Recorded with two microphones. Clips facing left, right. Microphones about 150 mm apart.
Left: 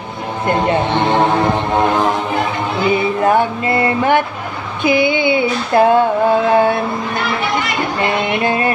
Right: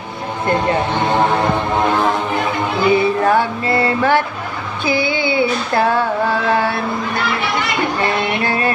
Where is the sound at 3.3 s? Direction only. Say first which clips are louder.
Left 1 dB; 20° left (ahead or behind).